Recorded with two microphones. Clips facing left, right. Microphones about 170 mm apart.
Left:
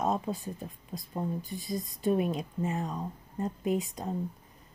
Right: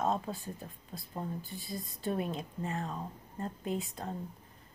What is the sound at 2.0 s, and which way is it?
A woman's voice, 15° left (ahead or behind).